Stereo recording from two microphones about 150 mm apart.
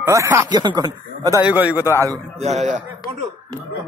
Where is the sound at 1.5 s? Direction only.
10° right (ahead or behind).